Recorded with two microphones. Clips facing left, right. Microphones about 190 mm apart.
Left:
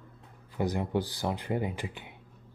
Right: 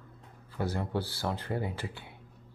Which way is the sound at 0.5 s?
15° left (ahead or behind).